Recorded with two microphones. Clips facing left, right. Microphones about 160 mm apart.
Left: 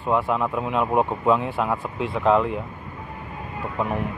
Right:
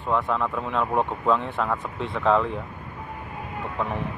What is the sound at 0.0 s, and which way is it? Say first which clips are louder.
Speech: left 2 dB; 15° left (ahead or behind).